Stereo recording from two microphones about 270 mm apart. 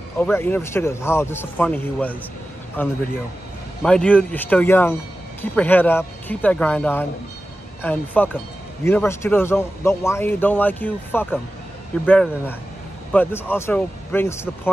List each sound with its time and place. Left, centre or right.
0.2 s a man's voice: centre